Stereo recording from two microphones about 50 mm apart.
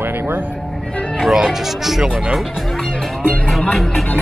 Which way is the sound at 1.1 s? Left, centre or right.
Centre.